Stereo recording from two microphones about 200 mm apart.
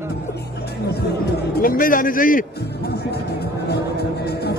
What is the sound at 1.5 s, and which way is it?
Music, 45° left (ahead or behind).